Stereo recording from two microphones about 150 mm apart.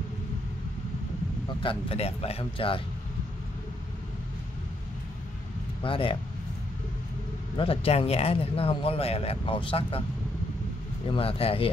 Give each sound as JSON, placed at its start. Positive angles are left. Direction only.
{"t": 1.6, "sound": "speech", "side_deg": 35}
{"t": 5.8, "sound": "speech", "side_deg": 35}
{"t": 7.5, "sound": "speech", "side_deg": 40}
{"t": 11.1, "sound": "speech", "side_deg": 40}